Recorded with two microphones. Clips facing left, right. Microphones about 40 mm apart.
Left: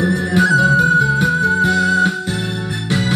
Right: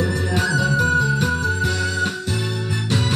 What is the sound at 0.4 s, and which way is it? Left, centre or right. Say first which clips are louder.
Music: left 8 dB; left.